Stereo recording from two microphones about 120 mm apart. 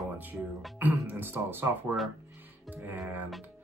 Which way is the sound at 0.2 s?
15° right (ahead or behind).